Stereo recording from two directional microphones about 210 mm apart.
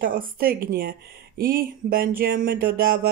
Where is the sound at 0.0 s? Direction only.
40° right (ahead or behind).